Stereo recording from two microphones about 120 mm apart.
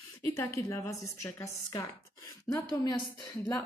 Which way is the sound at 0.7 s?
20° left (ahead or behind).